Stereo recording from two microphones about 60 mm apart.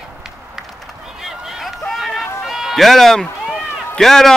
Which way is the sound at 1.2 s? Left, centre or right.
Centre.